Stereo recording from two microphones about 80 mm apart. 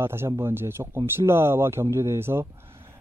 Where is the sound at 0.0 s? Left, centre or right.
Right.